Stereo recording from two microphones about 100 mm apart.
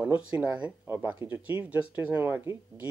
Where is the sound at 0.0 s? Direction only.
10° right (ahead or behind).